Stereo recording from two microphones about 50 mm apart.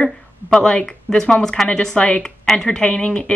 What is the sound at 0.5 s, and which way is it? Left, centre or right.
Speech, centre.